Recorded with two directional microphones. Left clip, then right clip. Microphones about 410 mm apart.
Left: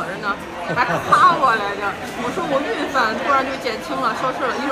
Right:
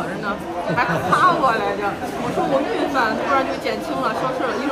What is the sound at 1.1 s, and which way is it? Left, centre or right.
Speech, centre.